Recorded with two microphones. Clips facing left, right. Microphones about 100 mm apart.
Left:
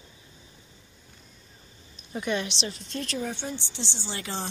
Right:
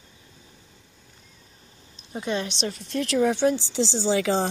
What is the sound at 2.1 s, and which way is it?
A woman's voice, 30° right (ahead or behind).